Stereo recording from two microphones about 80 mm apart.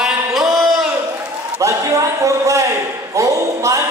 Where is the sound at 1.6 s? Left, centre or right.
Right.